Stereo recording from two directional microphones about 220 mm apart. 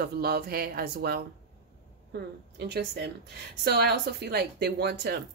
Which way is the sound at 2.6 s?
50° right (ahead or behind).